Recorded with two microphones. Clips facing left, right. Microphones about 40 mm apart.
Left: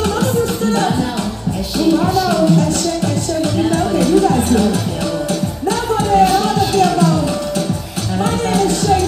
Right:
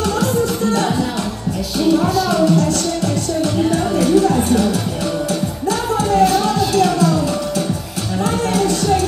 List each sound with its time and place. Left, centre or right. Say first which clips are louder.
0.0 s music: left 1 dB; left
2.1 s music: left 1 dB; left
4.0 s music: even; left
5.7 s music: left 2 dB; left
8.2 s a sound: left 2 dB; left